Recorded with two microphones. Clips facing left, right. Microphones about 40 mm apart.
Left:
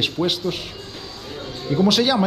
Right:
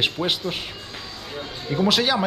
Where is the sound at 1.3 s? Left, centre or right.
Centre.